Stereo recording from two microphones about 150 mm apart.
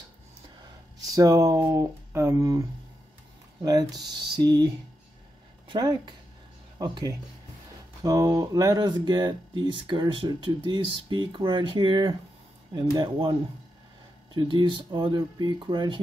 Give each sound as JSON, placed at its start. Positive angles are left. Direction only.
{"t": 0.9, "sound": "speech", "side_deg": -25}
{"t": 3.6, "sound": "speech", "side_deg": -25}
{"t": 5.7, "sound": "speech", "side_deg": -25}
{"t": 14.3, "sound": "speech", "side_deg": -35}